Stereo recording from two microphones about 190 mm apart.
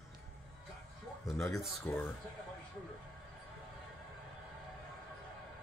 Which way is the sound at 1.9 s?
10° left (ahead or behind).